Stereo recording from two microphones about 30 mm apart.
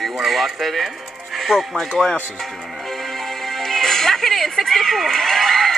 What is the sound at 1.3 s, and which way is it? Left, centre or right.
Music, centre.